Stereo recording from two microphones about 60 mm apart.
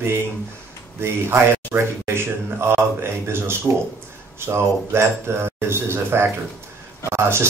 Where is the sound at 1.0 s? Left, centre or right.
Right.